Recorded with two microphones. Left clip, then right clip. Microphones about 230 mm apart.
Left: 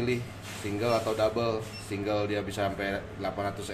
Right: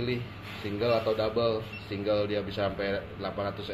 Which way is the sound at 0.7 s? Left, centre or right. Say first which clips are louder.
Right 1 dB; left.